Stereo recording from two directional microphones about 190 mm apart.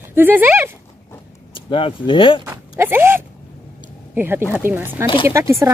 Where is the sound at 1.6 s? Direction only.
25° left (ahead or behind).